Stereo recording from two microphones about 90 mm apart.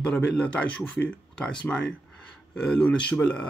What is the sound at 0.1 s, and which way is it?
Speech, 10° left (ahead or behind).